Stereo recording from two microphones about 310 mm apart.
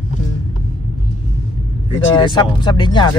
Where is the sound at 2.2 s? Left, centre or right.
Centre.